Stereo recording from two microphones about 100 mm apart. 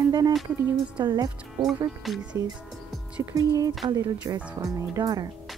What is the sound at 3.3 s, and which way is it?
Speech, 35° right (ahead or behind).